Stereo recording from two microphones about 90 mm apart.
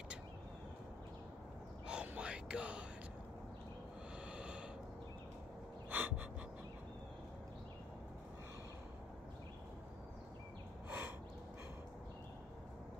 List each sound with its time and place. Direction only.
1.9 s whispering: 10° right (ahead or behind)
4.3 s snort: 10° right (ahead or behind)
5.9 s gasp: 15° right (ahead or behind)
10.9 s a sound: 20° right (ahead or behind)